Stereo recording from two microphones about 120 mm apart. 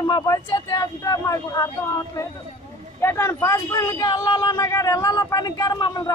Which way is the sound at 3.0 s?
20° left (ahead or behind).